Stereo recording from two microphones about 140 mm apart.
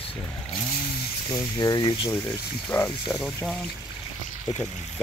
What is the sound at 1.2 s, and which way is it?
Speech, 30° left (ahead or behind).